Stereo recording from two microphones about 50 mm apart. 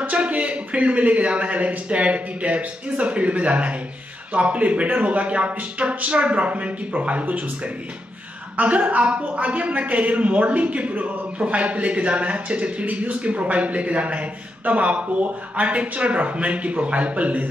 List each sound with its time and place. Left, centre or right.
0.0 s a man's voice: right